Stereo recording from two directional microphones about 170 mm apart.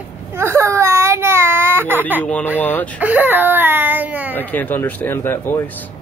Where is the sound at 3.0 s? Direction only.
10° right (ahead or behind).